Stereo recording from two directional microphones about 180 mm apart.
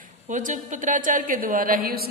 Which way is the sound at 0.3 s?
45° right (ahead or behind).